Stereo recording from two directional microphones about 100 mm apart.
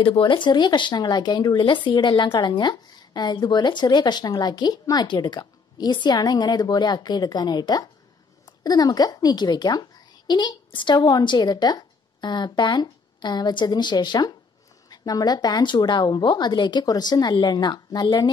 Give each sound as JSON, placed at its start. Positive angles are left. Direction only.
{"t": 0.0, "sound": "speech", "side_deg": 60}